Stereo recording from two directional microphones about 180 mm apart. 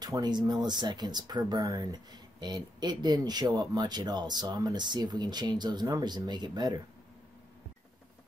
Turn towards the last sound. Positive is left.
turn(degrees=-25)  # may be behind; listen again after turning